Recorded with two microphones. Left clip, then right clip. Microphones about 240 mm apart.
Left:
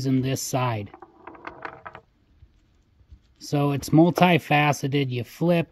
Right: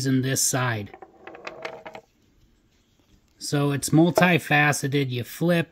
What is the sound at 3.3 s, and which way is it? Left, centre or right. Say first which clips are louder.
Speech: even; centre.